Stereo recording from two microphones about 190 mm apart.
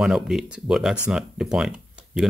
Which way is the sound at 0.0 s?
Centre (ahead or behind).